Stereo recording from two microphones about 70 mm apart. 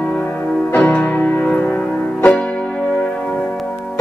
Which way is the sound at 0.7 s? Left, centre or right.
Left.